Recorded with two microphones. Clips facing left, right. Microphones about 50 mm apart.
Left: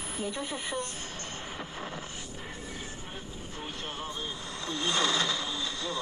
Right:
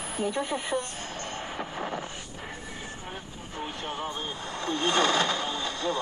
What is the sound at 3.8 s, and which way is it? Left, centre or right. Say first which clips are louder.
Speech: right 3 dB; right.